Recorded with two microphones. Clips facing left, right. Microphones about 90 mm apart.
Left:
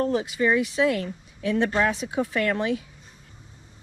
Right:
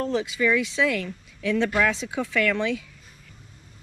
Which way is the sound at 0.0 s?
25° left (ahead or behind).